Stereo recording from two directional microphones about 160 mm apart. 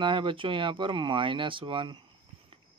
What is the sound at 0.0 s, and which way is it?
Speech, 30° right (ahead or behind).